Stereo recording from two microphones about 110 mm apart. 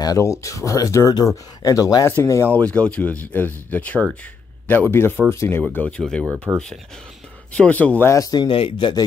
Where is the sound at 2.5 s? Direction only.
10° left (ahead or behind).